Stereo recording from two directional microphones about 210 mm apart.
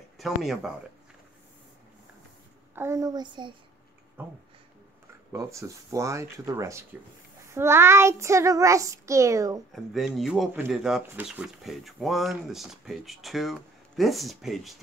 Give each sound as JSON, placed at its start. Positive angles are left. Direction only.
{"t": 0.2, "sound": "speech", "side_deg": 0}
{"t": 2.7, "sound": "a child's voice", "side_deg": -10}
{"t": 4.2, "sound": "a child's voice", "side_deg": -10}
{"t": 9.7, "sound": "speech", "side_deg": 0}